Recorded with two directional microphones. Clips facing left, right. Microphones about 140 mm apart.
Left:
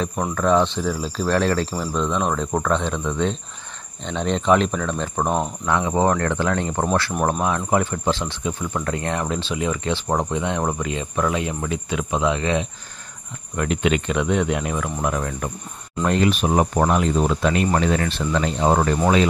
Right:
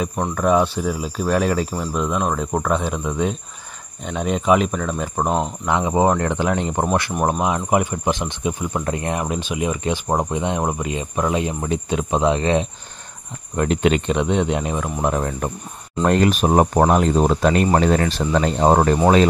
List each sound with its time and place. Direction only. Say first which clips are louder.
0.3 s speech: right 1 dB; 10° right (ahead or behind); by 14.0 s 35° right (ahead or behind)
14.0 s speech: right 2 dB; 25° right (ahead or behind)
16.0 s speech: right 3 dB; 45° right (ahead or behind)